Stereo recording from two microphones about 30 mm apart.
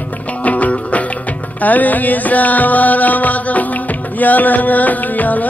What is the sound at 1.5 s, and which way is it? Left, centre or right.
Music, left.